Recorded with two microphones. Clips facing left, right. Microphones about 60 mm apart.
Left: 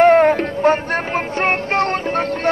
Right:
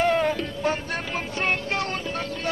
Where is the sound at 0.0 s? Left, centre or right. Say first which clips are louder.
Left 11 dB; left.